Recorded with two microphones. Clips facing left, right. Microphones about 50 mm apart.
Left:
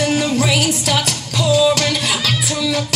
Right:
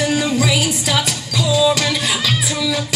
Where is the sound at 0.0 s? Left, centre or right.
Left.